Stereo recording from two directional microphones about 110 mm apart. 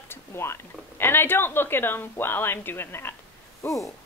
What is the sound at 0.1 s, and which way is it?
Speech, 25° left (ahead or behind).